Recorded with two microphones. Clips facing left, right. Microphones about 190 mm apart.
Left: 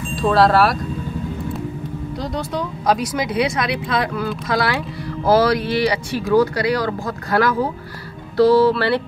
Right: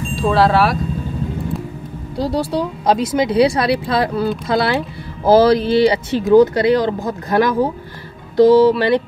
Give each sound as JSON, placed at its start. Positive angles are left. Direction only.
{"t": 0.1, "sound": "speech", "side_deg": 0}
{"t": 2.1, "sound": "speech", "side_deg": -35}